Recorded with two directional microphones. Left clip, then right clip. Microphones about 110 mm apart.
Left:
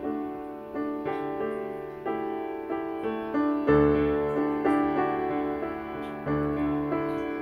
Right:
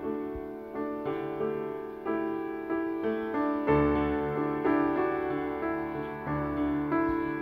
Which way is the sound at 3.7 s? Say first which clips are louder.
Left 5 dB; 20° left (ahead or behind).